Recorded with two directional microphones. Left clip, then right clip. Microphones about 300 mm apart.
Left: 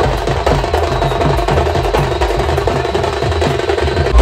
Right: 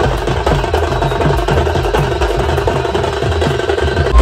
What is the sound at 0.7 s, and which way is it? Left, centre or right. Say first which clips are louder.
Music: even; left.